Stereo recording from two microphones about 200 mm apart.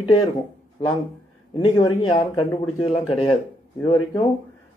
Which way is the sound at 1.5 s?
20° left (ahead or behind).